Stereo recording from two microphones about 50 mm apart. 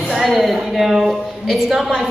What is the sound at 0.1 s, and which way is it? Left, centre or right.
A woman's voice, centre.